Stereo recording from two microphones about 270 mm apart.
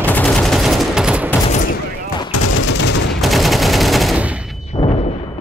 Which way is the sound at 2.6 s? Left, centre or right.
Left.